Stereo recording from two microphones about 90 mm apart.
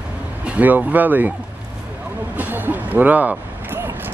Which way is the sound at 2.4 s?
20° right (ahead or behind).